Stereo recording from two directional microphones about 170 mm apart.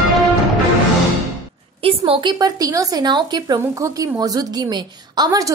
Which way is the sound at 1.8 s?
35° right (ahead or behind).